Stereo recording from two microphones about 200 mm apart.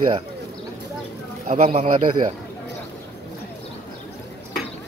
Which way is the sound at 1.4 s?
35° right (ahead or behind).